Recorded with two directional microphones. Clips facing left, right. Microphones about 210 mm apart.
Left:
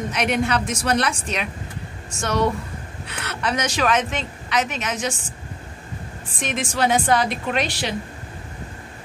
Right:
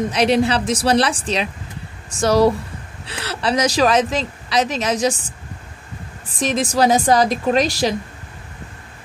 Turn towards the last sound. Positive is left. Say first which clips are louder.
# right 7 dB
turn(degrees=-40)  # may be behind; listen again after turning